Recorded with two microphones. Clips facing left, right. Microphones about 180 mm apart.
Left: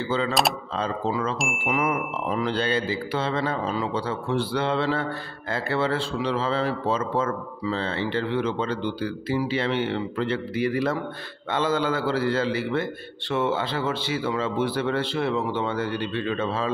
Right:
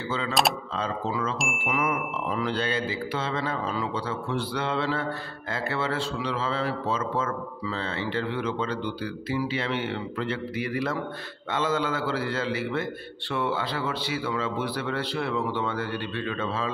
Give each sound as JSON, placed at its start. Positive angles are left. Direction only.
{"t": 0.7, "sound": "speech", "side_deg": 35}
{"t": 1.4, "sound": "chime", "side_deg": 0}
{"t": 1.7, "sound": "a man's voice", "side_deg": 35}